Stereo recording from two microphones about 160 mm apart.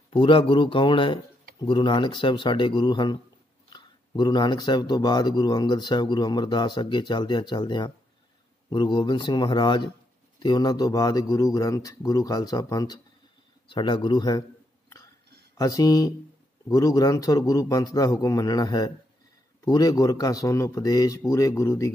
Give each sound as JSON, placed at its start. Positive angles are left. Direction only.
{"t": 0.1, "sound": "speech", "side_deg": 30}
{"t": 15.5, "sound": "speech", "side_deg": 20}